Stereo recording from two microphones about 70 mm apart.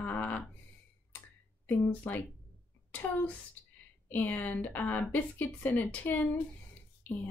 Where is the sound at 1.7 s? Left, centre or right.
Left.